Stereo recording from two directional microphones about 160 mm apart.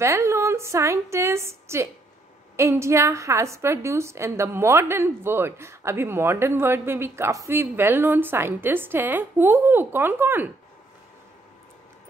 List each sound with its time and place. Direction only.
0.0 s a woman's voice: 20° right (ahead or behind)